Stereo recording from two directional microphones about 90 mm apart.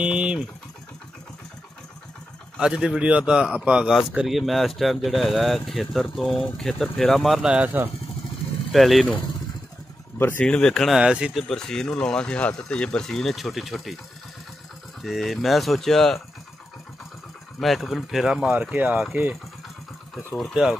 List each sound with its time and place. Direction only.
0.0 s speech: 10° right (ahead or behind)
2.6 s speech: 10° right (ahead or behind)
7.5 s speech: 20° right (ahead or behind)
8.7 s speech: centre (ahead or behind)
10.1 s speech: 20° left (ahead or behind)
10.4 s speech: 10° left (ahead or behind)
11.0 s speech: 10° right (ahead or behind)
11.3 s speech: 5° left (ahead or behind)
15.0 s speech: centre (ahead or behind)
17.6 s speech: centre (ahead or behind)
20.5 s speech: 10° right (ahead or behind)